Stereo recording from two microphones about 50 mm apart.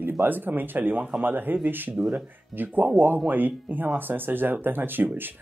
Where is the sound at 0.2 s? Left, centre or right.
Right.